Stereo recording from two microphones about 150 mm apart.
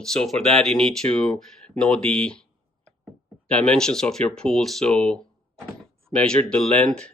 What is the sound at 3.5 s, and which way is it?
Speech, 5° left (ahead or behind).